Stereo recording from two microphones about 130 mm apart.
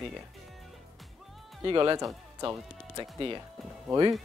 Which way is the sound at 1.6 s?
30° right (ahead or behind).